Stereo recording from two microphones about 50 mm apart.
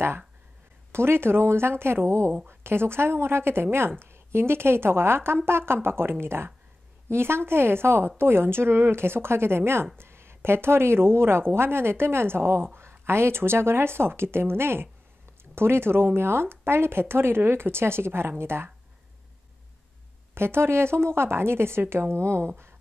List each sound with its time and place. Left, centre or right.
0.9 s speech: right
20.3 s speech: right